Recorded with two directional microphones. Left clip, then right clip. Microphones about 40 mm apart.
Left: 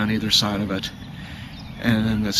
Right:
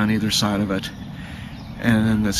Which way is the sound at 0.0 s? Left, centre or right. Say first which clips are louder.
Left 1 dB; centre.